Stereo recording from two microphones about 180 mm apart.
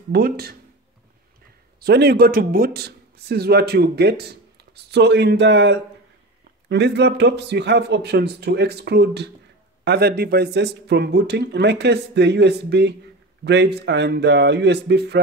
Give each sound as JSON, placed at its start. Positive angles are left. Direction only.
{"t": 0.1, "sound": "speech", "side_deg": -60}
{"t": 1.8, "sound": "speech", "side_deg": -65}